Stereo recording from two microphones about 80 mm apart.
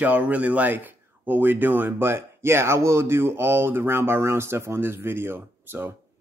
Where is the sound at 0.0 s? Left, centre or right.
Centre.